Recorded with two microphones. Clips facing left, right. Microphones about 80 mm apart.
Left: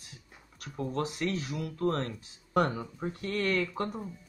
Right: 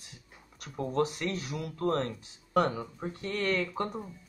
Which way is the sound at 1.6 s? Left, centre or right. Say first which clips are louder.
Right 2 dB; right.